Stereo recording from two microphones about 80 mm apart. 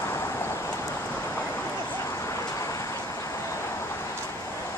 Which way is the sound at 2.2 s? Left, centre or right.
Left.